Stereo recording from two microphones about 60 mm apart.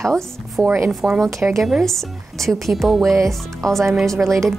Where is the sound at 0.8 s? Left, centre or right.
Centre.